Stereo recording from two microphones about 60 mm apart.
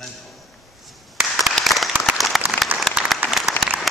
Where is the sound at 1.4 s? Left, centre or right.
Centre.